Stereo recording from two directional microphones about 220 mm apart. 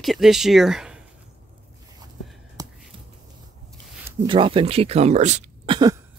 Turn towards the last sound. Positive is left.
turn(degrees=-20)  # may be behind; listen again after turning